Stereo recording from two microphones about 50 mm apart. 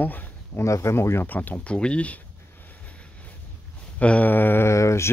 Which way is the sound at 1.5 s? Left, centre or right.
Left.